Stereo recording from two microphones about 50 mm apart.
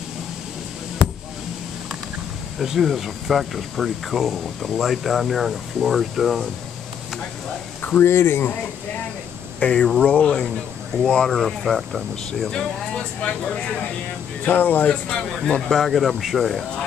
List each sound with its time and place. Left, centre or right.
2.6 s speech: centre
8.0 s speech: left
9.6 s speech: centre
12.4 s speech: centre
14.4 s speech: left
14.9 s speech: centre
15.7 s speech: centre